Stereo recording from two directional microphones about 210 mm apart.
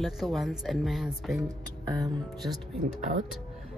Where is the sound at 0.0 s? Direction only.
Centre (ahead or behind).